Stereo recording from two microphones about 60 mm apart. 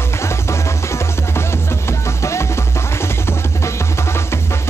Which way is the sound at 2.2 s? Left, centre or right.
Left.